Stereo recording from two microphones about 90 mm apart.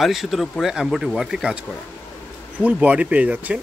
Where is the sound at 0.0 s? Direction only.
Centre (ahead or behind).